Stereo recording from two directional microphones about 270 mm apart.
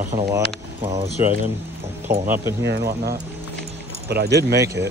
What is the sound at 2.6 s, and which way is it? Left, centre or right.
Speech, right.